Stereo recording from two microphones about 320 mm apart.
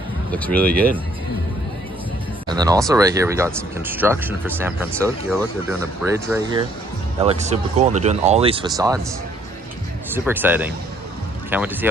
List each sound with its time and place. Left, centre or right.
0.3 s speech: centre
2.4 s speech: centre
7.2 s speech: centre
10.1 s speech: centre